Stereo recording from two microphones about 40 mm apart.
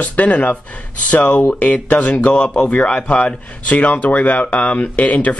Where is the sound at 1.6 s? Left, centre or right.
Left.